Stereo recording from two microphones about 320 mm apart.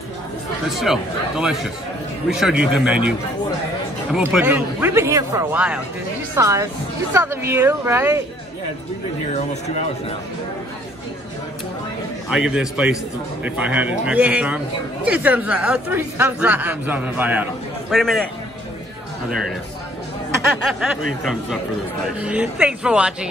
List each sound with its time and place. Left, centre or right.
0.7 s speech: centre
9.3 s speech: centre
12.3 s speech: centre
20.6 s speech: centre